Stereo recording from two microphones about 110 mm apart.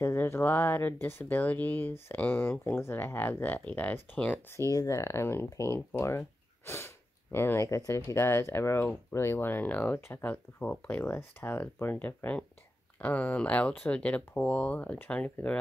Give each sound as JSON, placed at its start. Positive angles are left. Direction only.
{"t": 0.0, "sound": "speech", "side_deg": 20}
{"t": 4.6, "sound": "speech", "side_deg": 30}